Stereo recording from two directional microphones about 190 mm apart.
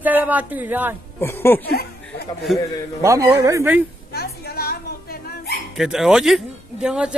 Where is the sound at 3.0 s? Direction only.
15° right (ahead or behind).